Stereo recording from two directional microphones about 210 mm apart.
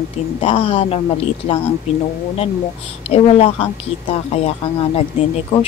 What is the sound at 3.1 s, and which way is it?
Speech, 30° left (ahead or behind).